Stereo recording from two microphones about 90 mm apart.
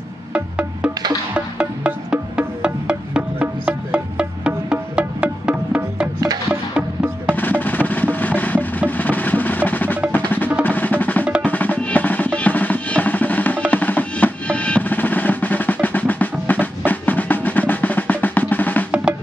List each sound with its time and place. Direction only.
0.3 s music: 10° right (ahead or behind)
7.3 s music: 20° left (ahead or behind)
8.9 s percussion: 20° left (ahead or behind)
11.4 s drum: 15° left (ahead or behind)